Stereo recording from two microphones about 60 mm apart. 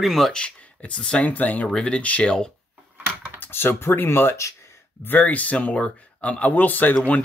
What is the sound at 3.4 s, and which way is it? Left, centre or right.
Speech, left.